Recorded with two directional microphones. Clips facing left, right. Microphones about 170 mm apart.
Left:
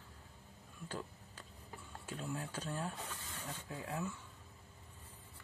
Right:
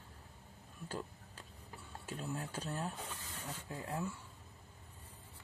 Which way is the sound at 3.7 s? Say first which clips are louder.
Right 1 dB; 10° right (ahead or behind).